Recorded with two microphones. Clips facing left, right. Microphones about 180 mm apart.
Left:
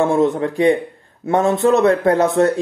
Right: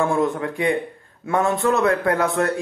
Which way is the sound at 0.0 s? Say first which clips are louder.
Left 5 dB; 25° left (ahead or behind).